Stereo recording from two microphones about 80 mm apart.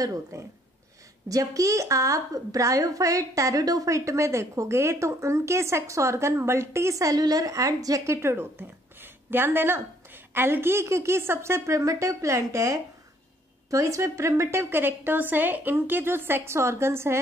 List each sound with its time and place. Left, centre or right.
0.0 s a woman's voice: right